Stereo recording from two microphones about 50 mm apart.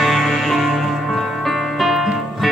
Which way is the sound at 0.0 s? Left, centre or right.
Centre.